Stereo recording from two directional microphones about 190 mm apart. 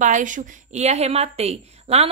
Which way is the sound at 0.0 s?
40° right (ahead or behind).